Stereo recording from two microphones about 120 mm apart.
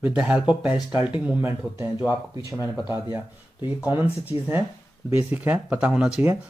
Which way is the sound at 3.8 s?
15° right (ahead or behind).